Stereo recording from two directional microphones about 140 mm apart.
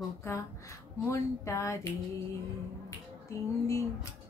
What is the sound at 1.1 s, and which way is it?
Speech, 20° left (ahead or behind).